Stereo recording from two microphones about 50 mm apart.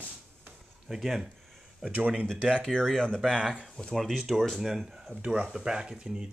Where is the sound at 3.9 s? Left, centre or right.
Centre.